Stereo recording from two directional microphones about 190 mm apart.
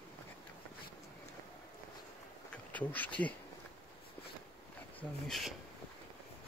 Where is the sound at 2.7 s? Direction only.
10° left (ahead or behind).